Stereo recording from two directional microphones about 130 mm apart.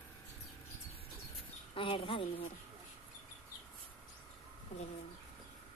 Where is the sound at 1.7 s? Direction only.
40° left (ahead or behind).